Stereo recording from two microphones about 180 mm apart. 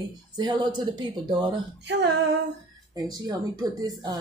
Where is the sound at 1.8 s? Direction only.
75° right (ahead or behind).